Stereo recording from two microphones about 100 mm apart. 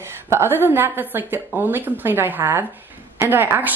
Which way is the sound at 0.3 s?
25° right (ahead or behind).